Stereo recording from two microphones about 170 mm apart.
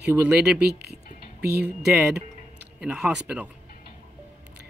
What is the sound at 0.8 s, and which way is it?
Music, 70° right (ahead or behind).